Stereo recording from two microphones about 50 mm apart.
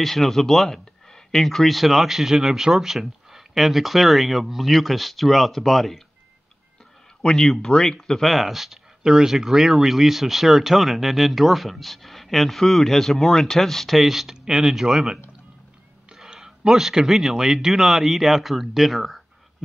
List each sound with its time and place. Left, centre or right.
0.0 s speech: centre
7.2 s speech: centre
8.2 s speech: centre
14.3 s speech: centre